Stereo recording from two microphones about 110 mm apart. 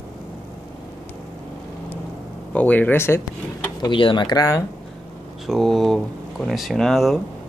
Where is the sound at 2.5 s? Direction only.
15° left (ahead or behind).